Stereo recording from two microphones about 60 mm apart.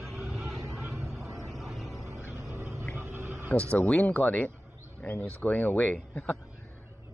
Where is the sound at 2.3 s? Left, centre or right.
Right.